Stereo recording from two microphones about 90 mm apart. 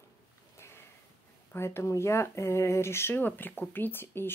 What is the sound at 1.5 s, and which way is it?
Speech, 30° left (ahead or behind).